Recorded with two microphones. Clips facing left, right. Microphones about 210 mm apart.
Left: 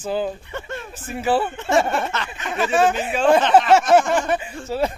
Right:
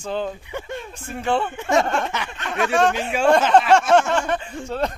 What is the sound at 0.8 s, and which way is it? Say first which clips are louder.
Speech: left 2 dB; 5° left (ahead or behind).